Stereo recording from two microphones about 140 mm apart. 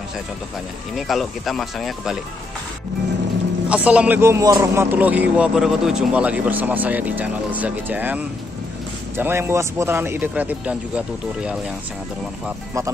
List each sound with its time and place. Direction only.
0.9 s speech: centre (ahead or behind)
3.6 s a man's voice: 10° right (ahead or behind)
4.9 s a man's voice: 10° right (ahead or behind)